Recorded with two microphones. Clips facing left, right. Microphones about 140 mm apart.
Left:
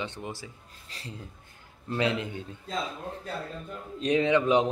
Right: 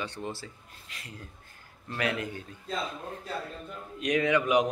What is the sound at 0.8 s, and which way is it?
Speech, 30° left (ahead or behind).